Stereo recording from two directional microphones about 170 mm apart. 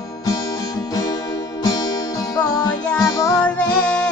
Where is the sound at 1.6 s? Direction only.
20° left (ahead or behind).